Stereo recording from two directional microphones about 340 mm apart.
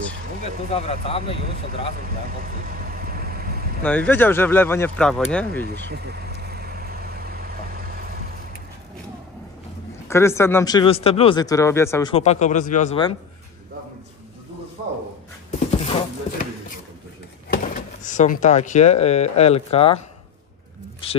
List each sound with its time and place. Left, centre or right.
0.4 s speech: centre
2.0 s vehicle: right
3.8 s speech: centre
5.7 s vehicle: right
10.0 s speech: centre
15.8 s a sound: centre
17.5 s speech: left